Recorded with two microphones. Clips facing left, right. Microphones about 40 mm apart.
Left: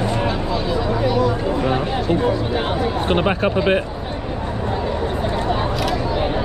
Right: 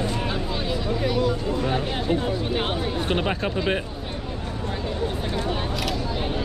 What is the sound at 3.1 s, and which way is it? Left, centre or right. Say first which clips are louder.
Speech: left 7 dB; left.